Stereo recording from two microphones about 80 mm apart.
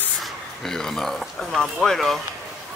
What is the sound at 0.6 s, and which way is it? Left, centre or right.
Speech, centre.